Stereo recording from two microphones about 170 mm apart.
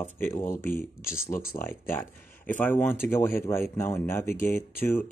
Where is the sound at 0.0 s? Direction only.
15° left (ahead or behind).